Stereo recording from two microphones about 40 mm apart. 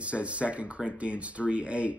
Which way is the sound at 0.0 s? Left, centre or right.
Right.